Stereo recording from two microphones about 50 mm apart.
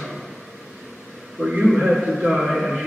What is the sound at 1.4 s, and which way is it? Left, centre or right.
A man's voice, centre.